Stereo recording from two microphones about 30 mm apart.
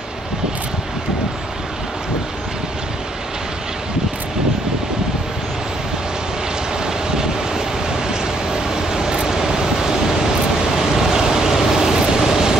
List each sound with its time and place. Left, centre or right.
6.9 s vehicle: centre
8.6 s vehicle: right